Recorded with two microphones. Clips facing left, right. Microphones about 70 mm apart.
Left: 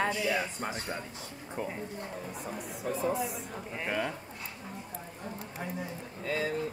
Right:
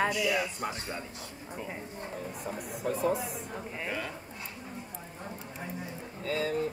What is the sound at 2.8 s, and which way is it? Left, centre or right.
Speech, right.